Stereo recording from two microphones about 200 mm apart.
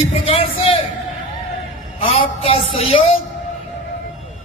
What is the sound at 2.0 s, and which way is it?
Speech, 30° left (ahead or behind).